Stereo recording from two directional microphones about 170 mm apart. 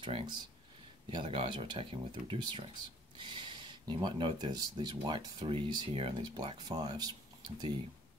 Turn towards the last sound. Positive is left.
turn(degrees=-25)  # may be behind; listen again after turning